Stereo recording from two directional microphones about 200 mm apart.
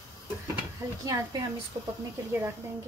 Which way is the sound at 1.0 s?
15° right (ahead or behind).